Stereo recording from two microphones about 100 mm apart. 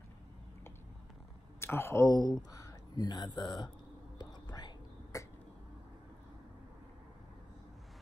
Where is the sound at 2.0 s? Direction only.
45° left (ahead or behind).